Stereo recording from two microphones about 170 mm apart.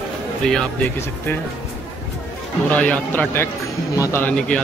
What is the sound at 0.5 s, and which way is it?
Speech, 5° left (ahead or behind).